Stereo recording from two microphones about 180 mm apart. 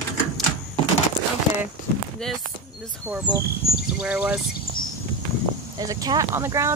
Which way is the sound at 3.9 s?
5° right (ahead or behind).